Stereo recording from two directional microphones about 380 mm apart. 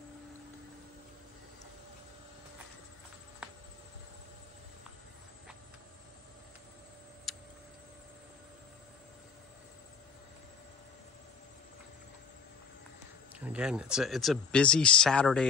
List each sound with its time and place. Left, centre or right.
7.3 s tick: centre
13.4 s speech: centre